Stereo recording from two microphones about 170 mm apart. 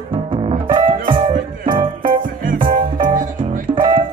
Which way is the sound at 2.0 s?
55° right (ahead or behind).